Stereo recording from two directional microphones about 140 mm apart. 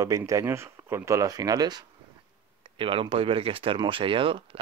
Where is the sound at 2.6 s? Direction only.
40° right (ahead or behind).